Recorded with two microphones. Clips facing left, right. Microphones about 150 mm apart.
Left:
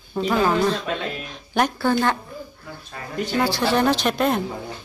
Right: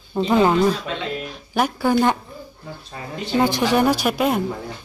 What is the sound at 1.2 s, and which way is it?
Music, 5° right (ahead or behind).